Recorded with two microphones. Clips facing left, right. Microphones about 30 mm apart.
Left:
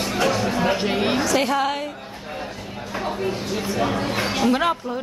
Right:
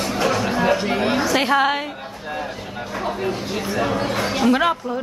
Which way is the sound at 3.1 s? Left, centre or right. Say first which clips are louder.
Right 1 dB; centre.